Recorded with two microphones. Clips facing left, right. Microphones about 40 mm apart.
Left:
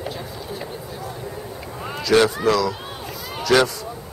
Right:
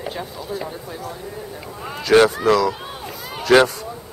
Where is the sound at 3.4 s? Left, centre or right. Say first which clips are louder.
Right 3 dB; right.